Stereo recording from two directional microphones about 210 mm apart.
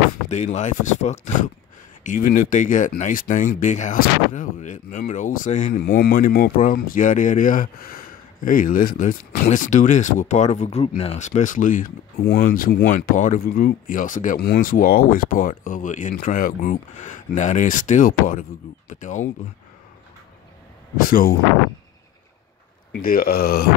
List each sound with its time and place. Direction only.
0.3 s speech: 35° left (ahead or behind)
5.8 s speech: 45° left (ahead or behind)
20.9 s speech: 45° left (ahead or behind)
22.9 s speech: 45° left (ahead or behind)